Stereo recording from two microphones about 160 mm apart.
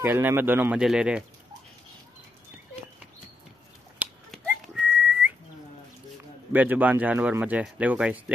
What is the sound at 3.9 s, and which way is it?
Whistling, 5° right (ahead or behind).